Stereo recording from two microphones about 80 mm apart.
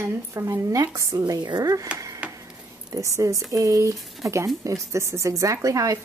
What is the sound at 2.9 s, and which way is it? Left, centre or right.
Speech, right.